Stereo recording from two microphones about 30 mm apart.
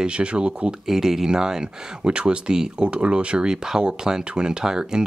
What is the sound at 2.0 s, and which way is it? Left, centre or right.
Speech, right.